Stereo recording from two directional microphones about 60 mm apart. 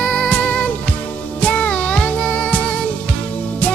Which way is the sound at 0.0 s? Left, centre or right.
Centre.